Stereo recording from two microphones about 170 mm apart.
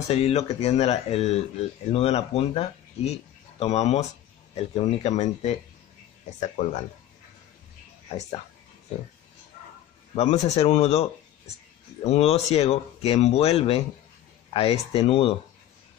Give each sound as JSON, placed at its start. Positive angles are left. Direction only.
{"t": 0.1, "sound": "speech", "side_deg": 40}
{"t": 10.3, "sound": "speech", "side_deg": 40}